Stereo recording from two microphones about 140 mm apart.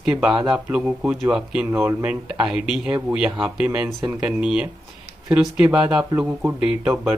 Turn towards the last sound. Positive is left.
turn(degrees=-10)  # may be behind; listen again after turning